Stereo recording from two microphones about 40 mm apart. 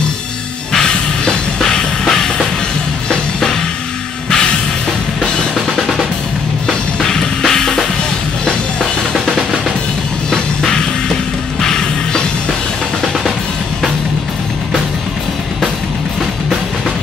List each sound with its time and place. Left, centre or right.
1.2 s music: centre
5.8 s drum: centre
7.0 s drum kit: centre
10.3 s music: centre